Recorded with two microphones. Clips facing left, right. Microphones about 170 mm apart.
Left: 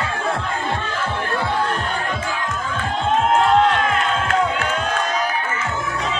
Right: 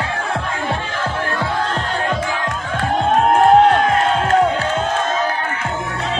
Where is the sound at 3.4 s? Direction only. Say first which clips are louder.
Right 5 dB; 45° right (ahead or behind).